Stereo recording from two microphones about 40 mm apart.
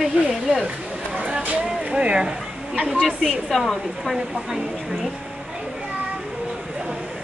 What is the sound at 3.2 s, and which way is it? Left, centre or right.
Speech, centre.